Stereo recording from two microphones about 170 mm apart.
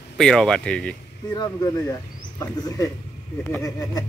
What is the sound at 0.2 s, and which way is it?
Speech, 5° left (ahead or behind).